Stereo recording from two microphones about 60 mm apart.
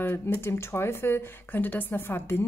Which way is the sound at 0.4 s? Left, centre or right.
Left.